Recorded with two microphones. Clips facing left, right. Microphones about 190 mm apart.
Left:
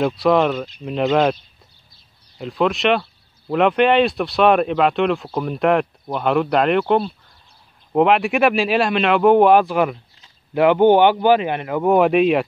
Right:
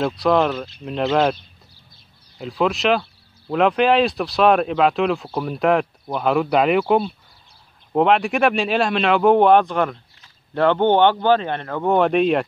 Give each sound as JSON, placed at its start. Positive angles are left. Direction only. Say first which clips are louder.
{"t": 0.0, "sound": "speech", "louder": "left 2 dB", "side_deg": 0}
{"t": 2.3, "sound": "speech", "louder": "left 1 dB", "side_deg": 0}